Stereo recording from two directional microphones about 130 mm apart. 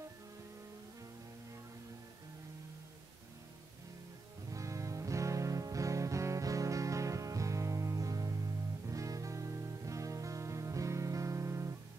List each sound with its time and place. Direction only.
4.5 s music: 25° right (ahead or behind)